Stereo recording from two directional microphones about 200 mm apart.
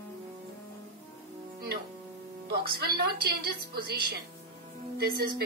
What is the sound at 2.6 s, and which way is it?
Speech, 50° right (ahead or behind).